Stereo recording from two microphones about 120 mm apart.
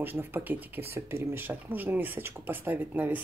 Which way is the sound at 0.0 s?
15° right (ahead or behind).